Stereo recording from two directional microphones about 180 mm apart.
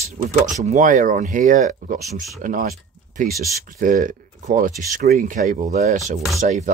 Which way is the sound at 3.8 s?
45° right (ahead or behind).